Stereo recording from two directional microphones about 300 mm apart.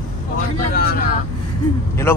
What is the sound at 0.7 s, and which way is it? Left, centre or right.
Speech, left.